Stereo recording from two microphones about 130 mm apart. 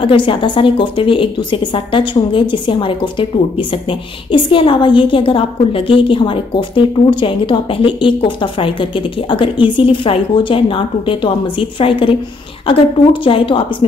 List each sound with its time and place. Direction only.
0.0 s a woman's voice: 40° left (ahead or behind)